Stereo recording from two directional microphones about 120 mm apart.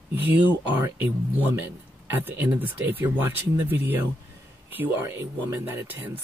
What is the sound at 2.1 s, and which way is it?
Speech, 15° right (ahead or behind).